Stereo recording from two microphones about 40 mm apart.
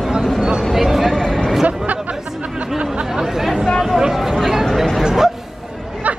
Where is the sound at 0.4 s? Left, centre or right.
Centre.